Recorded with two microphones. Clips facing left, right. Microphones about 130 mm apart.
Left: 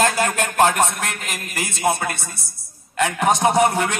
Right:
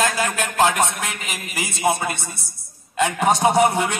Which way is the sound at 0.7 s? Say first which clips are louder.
Left 1 dB; centre (ahead or behind).